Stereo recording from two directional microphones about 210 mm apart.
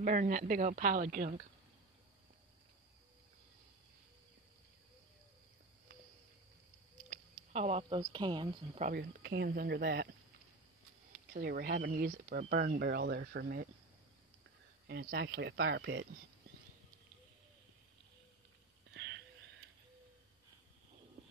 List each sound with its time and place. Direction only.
0.0 s speech: 40° right (ahead or behind)
7.1 s a sound: 30° right (ahead or behind)
8.0 s speech: 20° right (ahead or behind)
8.8 s speech: 45° right (ahead or behind)
11.3 s speech: 45° right (ahead or behind)
14.9 s speech: 50° right (ahead or behind)
18.9 s a sound: 60° right (ahead or behind)